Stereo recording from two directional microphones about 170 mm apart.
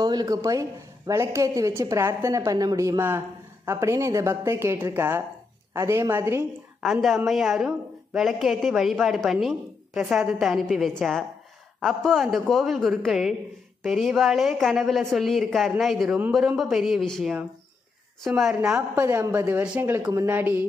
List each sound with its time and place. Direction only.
0.0 s a woman's voice: 25° right (ahead or behind)
6.8 s a woman's voice: centre (ahead or behind)
19.0 s a woman's voice: 15° right (ahead or behind)